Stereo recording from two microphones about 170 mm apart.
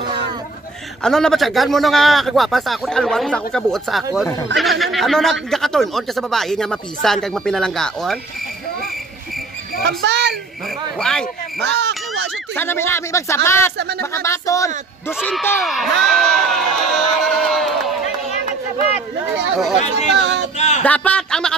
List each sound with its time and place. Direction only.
1.0 s speech: 5° left (ahead or behind)
9.8 s a child's voice: 85° right
11.0 s speech: 5° left (ahead or behind)
11.6 s speech: 90° right
12.5 s speech: 15° left (ahead or behind)
13.7 s speech: 75° right (ahead or behind)
14.1 s speech: 15° left (ahead or behind)
15.2 s speech: 5° left (ahead or behind)
20.2 s speech: 90° right
20.5 s a sound: 40° left (ahead or behind)
20.8 s speech: 10° left (ahead or behind)